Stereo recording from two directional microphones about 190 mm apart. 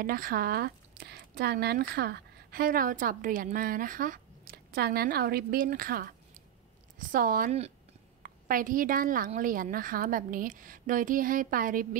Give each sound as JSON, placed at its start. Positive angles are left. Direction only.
{"t": 0.0, "sound": "speech", "side_deg": -50}